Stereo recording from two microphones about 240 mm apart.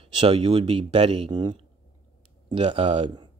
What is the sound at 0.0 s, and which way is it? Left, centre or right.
Speech, right.